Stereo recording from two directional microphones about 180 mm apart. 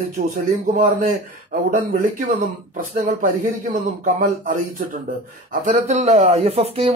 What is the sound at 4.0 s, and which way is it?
Speech, 45° right (ahead or behind).